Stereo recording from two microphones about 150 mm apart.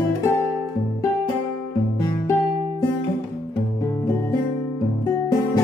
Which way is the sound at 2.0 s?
20° left (ahead or behind).